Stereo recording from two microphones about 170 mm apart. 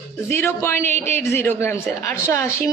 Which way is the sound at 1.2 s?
15° left (ahead or behind).